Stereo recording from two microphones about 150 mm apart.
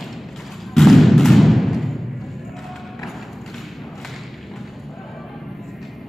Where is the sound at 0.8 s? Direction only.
Centre (ahead or behind).